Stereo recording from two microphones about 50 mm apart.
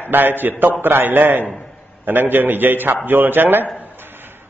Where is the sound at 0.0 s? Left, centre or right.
Right.